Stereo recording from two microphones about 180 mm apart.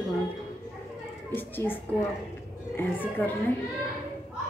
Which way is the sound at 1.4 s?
10° left (ahead or behind).